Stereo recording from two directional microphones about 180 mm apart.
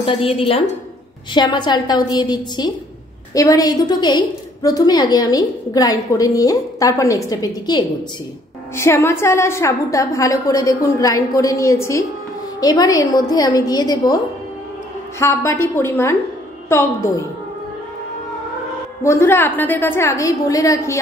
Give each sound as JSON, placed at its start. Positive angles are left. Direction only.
{"t": 0.0, "sound": "a woman's voice", "side_deg": 30}
{"t": 19.0, "sound": "a woman's voice", "side_deg": 15}